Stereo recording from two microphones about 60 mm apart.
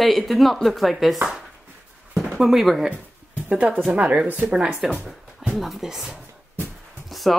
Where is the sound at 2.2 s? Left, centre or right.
Centre.